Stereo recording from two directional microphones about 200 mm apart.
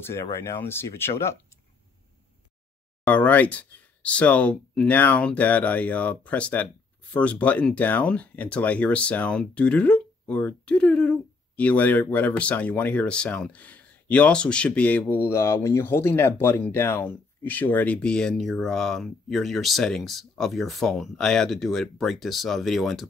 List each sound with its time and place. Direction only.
0.0 s speech: 10° left (ahead or behind)
3.1 s speech: 10° left (ahead or behind)